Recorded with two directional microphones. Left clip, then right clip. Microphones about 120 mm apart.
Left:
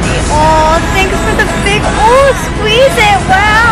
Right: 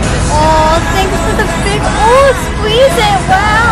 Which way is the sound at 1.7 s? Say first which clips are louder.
Left 1 dB; centre (ahead or behind).